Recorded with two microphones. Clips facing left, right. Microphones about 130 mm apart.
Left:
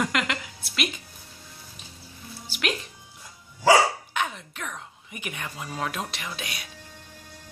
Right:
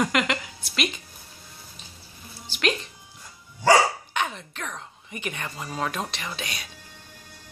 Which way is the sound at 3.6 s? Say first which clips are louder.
Even; 5° left (ahead or behind).